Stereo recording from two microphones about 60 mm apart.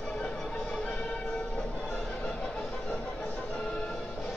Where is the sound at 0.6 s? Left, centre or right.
Left.